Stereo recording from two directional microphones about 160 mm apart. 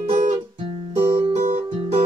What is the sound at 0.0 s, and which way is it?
Music, 40° right (ahead or behind).